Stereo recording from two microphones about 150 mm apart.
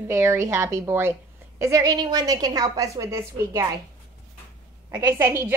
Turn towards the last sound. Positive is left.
turn(degrees=-20)  # may be behind; listen again after turning